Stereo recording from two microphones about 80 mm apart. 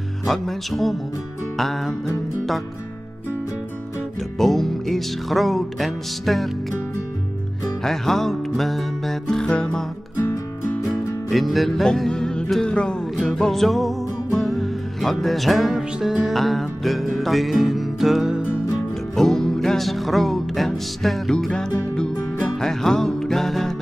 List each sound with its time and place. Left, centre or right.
0.3 s speech: centre
4.4 s music: centre
7.8 s music: centre
10.1 s music: left
10.9 s music: centre